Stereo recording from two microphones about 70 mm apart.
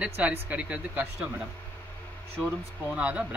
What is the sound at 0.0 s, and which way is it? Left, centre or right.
Speech, centre.